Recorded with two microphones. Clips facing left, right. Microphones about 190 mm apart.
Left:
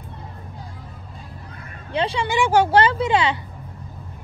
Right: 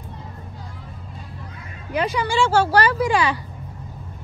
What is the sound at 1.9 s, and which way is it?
Speech, 30° left (ahead or behind).